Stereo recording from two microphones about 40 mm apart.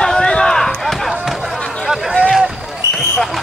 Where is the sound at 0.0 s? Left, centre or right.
Centre.